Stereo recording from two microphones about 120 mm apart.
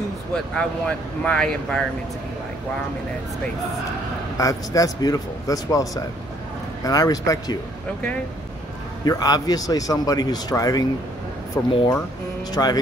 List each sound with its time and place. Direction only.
0.6 s speech: 10° left (ahead or behind)
4.4 s speech: 30° left (ahead or behind)
9.0 s a man's voice: 30° left (ahead or behind)